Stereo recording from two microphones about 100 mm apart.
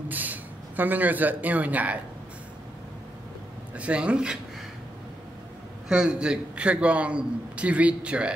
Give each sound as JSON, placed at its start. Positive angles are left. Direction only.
{"t": 0.1, "sound": "speech", "side_deg": -15}
{"t": 3.7, "sound": "a man's voice", "side_deg": -10}
{"t": 5.9, "sound": "a man's voice", "side_deg": -10}